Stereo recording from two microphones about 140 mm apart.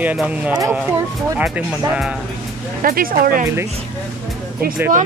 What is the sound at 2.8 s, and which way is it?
Speech, 90° right.